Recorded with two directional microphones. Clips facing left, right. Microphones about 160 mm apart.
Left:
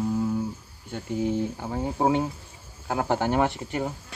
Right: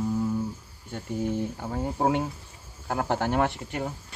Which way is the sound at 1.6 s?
5° left (ahead or behind).